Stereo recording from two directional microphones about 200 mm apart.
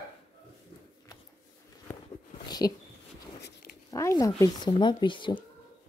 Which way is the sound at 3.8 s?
15° left (ahead or behind).